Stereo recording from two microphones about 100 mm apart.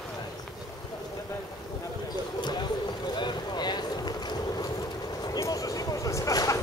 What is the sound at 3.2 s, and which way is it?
Vehicle, 45° left (ahead or behind).